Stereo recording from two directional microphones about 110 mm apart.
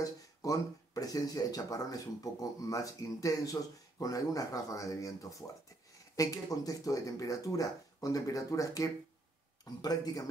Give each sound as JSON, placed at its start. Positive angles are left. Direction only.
{"t": 0.0, "sound": "speech", "side_deg": 30}